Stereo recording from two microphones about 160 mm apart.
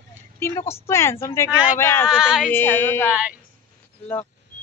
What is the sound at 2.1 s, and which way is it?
Speech, 5° right (ahead or behind).